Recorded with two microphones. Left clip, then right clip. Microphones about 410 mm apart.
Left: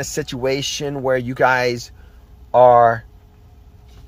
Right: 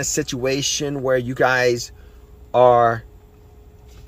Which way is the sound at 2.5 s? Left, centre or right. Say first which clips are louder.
Left 3 dB; left.